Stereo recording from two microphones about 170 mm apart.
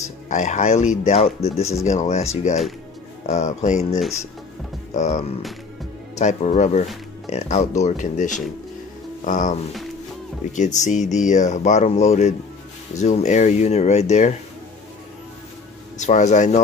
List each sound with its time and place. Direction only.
0.0 s speech: 45° left (ahead or behind)
16.0 s speech: 45° left (ahead or behind)